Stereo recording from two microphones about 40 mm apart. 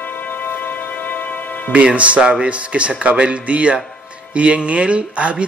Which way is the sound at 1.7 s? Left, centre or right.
Right.